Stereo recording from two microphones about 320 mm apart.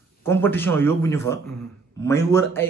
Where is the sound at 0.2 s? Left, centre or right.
Centre.